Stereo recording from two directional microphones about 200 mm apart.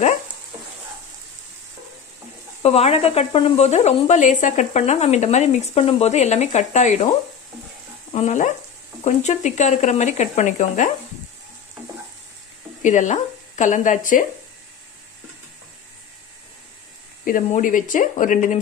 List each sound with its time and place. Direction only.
2.6 s speech: 30° left (ahead or behind)
8.1 s speech: 35° left (ahead or behind)
12.8 s speech: 35° left (ahead or behind)
17.2 s speech: 40° left (ahead or behind)